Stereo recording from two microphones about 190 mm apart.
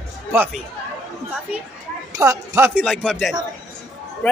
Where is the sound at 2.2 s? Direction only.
15° right (ahead or behind).